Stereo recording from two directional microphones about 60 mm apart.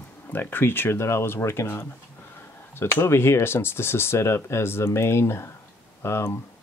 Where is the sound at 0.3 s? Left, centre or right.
Left.